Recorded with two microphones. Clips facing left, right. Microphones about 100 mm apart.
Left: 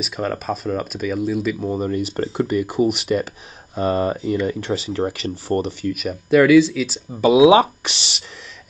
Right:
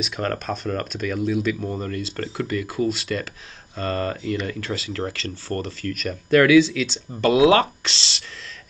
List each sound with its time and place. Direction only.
0.0 s speech: 5° left (ahead or behind)
1.6 s speech: 15° left (ahead or behind)
5.1 s speech: 15° left (ahead or behind)